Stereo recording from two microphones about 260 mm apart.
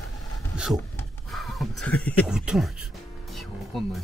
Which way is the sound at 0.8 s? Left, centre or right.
Centre.